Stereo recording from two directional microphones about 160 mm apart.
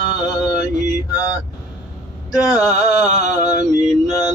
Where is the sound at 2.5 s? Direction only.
5° right (ahead or behind).